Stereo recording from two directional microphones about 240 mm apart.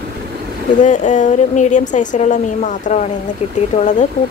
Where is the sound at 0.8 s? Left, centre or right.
Left.